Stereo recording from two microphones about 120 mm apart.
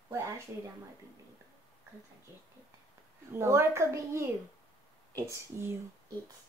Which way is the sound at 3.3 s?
20° right (ahead or behind).